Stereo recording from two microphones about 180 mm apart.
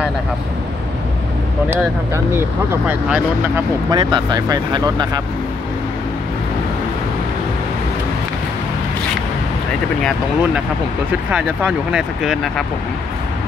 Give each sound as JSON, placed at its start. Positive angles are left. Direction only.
{"t": 2.3, "sound": "speech", "side_deg": -10}
{"t": 3.9, "sound": "speech", "side_deg": -25}
{"t": 11.2, "sound": "speech", "side_deg": -5}